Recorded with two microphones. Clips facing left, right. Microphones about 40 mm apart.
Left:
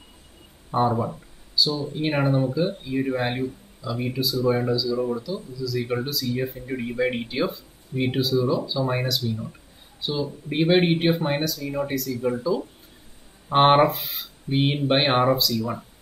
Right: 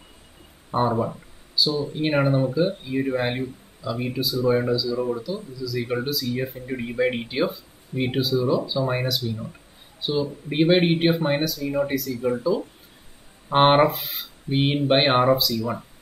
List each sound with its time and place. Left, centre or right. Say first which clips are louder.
0.7 s speech: left 1 dB; centre
2.0 s speech: right 1 dB; centre
13.5 s speech: even; centre